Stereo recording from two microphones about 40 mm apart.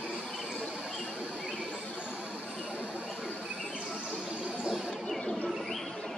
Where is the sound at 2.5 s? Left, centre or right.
Right.